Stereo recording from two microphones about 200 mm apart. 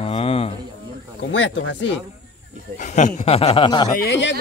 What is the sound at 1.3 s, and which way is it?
Speech, 65° left (ahead or behind).